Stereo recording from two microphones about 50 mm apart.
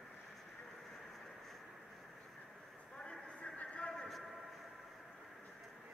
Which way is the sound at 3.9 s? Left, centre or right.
Centre.